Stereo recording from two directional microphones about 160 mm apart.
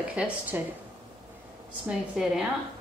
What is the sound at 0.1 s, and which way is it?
Speech, 10° right (ahead or behind).